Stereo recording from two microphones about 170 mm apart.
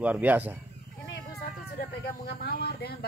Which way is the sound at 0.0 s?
10° right (ahead or behind).